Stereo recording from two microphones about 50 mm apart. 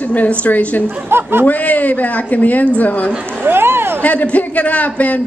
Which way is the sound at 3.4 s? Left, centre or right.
Right.